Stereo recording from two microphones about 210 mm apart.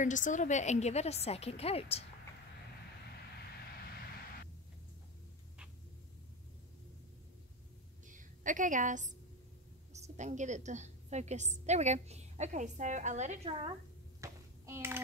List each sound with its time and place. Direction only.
0.0 s a woman's voice: 35° left (ahead or behind)
8.1 s a woman's voice: 40° right (ahead or behind)
14.2 s a sound: 10° right (ahead or behind)